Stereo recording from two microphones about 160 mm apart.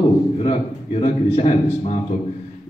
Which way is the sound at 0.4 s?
40° left (ahead or behind).